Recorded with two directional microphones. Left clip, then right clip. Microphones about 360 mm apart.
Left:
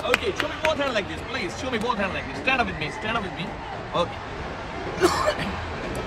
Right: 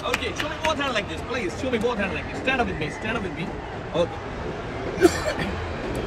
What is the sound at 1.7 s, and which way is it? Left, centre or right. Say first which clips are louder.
Speech: even; left.